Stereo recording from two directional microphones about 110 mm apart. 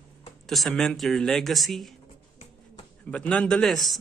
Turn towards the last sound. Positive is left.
turn(degrees=0)  # may be behind; listen again after turning